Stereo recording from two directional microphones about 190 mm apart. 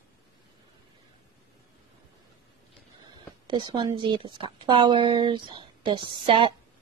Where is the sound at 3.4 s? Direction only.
25° right (ahead or behind).